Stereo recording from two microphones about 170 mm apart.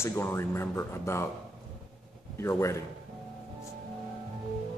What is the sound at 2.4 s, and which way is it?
Speech, 15° left (ahead or behind).